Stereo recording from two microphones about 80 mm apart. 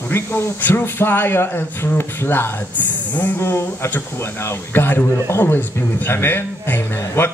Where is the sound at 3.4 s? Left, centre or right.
Left.